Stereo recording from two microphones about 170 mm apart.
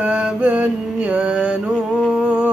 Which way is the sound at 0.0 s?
10° right (ahead or behind).